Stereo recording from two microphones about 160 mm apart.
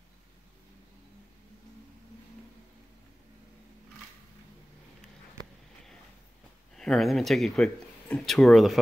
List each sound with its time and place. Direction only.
6.7 s speech: 5° left (ahead or behind)